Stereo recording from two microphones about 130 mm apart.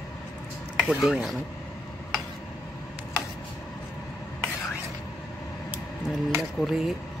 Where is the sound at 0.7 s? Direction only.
5° right (ahead or behind).